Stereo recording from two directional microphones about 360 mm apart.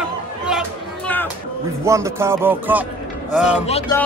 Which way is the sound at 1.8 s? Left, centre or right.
Centre.